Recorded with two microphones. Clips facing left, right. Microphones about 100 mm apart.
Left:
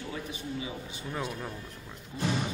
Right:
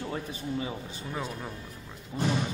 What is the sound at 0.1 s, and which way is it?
Speech, 40° right (ahead or behind).